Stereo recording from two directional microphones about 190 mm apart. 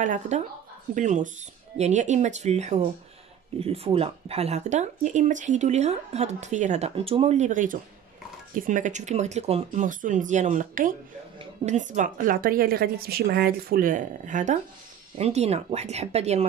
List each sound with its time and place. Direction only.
0.0 s a woman's voice: 45° right (ahead or behind)